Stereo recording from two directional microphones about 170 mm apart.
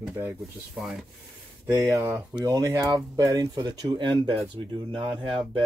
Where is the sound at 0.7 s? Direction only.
Centre (ahead or behind).